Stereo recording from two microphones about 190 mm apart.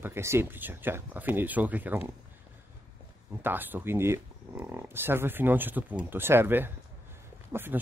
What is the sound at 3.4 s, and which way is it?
Speech, 10° right (ahead or behind).